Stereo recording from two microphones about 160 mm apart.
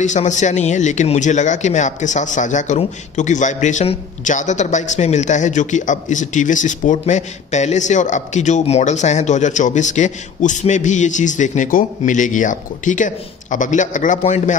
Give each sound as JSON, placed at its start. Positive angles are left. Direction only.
{"t": 0.0, "sound": "speech", "side_deg": 50}